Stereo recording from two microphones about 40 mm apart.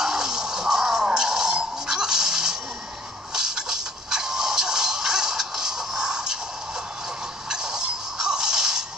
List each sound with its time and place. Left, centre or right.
0.0 s music: centre
7.4 s music: centre